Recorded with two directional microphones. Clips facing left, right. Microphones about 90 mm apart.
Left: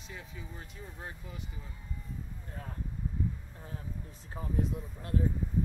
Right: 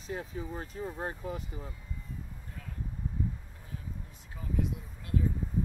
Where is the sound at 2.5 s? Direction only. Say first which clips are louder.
Left 3 dB; 40° left (ahead or behind).